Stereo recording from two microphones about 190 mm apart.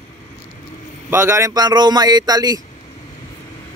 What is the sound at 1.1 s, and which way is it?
A man's voice, 15° right (ahead or behind).